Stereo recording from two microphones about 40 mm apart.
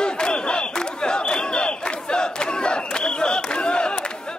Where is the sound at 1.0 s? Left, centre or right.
Left.